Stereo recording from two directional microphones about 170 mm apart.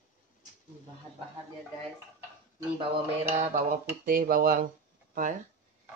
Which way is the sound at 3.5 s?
55° right (ahead or behind).